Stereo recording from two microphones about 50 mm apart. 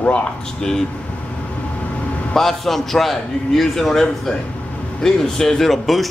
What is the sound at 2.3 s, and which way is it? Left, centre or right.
A man's voice, centre.